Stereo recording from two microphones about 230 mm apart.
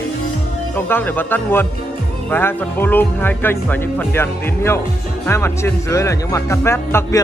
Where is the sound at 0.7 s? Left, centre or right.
Centre.